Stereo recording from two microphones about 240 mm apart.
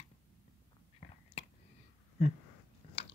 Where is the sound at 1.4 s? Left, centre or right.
Left.